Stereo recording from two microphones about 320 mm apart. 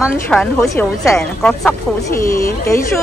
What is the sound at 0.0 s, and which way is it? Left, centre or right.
A woman's voice, centre.